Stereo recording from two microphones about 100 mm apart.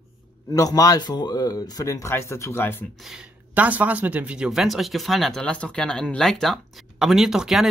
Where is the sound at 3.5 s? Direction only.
15° right (ahead or behind).